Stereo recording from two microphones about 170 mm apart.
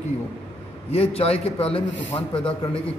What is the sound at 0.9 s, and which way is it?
Speech, 35° left (ahead or behind).